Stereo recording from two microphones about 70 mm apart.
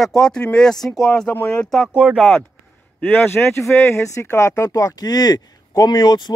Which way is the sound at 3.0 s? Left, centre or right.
Left.